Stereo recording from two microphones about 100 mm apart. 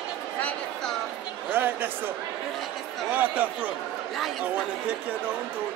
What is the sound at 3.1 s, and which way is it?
Speech, 15° right (ahead or behind).